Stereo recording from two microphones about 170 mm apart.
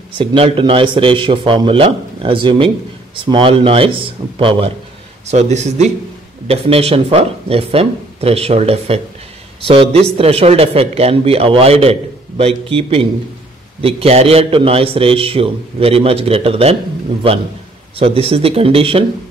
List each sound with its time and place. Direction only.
0.2 s a man's voice: 30° right (ahead or behind)
17.9 s a man's voice: 35° right (ahead or behind)